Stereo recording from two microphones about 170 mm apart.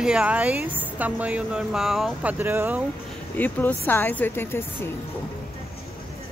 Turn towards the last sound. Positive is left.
turn(degrees=15)  # may be behind; listen again after turning